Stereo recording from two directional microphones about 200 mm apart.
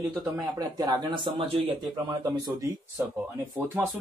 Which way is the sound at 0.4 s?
20° right (ahead or behind).